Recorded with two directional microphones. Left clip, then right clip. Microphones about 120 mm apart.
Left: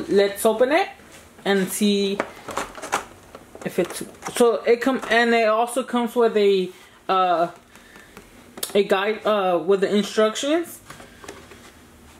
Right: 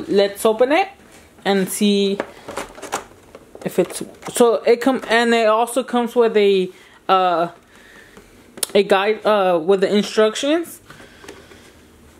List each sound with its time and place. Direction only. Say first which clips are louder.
0.2 s speech: right 3 dB; 45° right (ahead or behind)
2.5 s a sound: left 1 dB; 10° right (ahead or behind)
3.6 s speech: right 4 dB; 35° right (ahead or behind)
8.5 s speech: right 4 dB; 40° right (ahead or behind)